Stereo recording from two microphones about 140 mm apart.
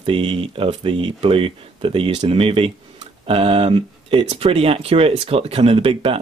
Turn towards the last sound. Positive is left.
turn(degrees=-45)  # may be behind; listen again after turning